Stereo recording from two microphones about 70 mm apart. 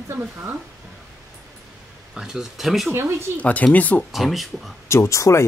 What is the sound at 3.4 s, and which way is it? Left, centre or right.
Speech, left.